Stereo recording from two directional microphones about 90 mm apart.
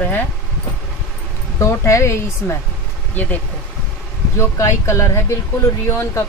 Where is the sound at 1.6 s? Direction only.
35° left (ahead or behind).